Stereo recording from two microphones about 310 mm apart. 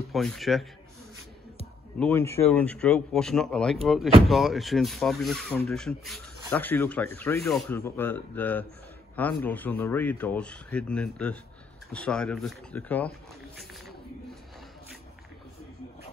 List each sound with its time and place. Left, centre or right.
0.1 s speech: centre
2.0 s speech: centre